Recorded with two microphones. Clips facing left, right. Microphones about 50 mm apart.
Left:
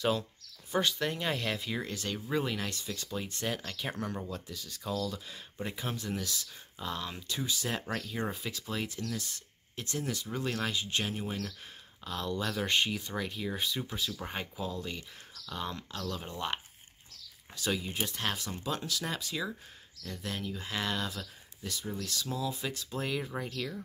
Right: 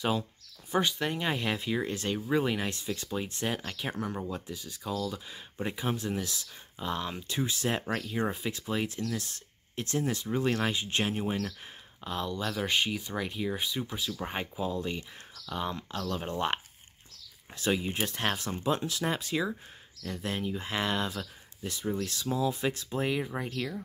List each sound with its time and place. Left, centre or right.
0.0 s speech: centre
4.8 s speech: centre; by 8.9 s right
9.9 s speech: right
12.4 s speech: centre; by 16.5 s right
17.6 s speech: right
22.5 s speech: right; by 23.8 s centre